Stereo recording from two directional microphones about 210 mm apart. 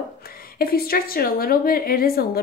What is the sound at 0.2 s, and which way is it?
Speech, 45° left (ahead or behind).